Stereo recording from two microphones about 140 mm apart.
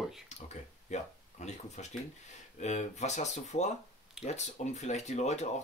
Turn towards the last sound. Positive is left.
turn(degrees=55)  # may be behind; listen again after turning